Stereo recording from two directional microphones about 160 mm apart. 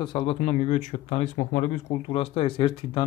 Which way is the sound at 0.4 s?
45° left (ahead or behind).